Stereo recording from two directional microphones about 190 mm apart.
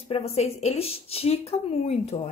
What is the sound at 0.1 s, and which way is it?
A woman's voice, 30° left (ahead or behind).